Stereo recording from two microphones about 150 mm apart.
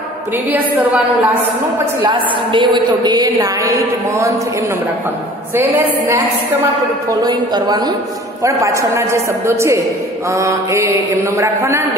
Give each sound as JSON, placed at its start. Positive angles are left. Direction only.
{"t": 0.5, "sound": "a woman's voice", "side_deg": -10}
{"t": 2.0, "sound": "a woman's voice", "side_deg": -30}
{"t": 5.5, "sound": "a woman's voice", "side_deg": -15}
{"t": 7.1, "sound": "a woman's voice", "side_deg": -25}